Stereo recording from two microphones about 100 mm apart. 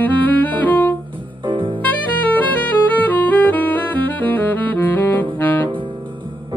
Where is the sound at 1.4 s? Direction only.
55° right (ahead or behind).